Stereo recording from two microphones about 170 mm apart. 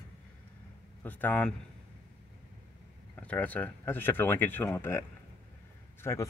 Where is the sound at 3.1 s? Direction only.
10° left (ahead or behind).